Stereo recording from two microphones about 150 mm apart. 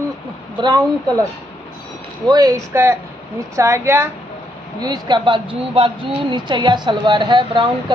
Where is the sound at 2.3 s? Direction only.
25° right (ahead or behind).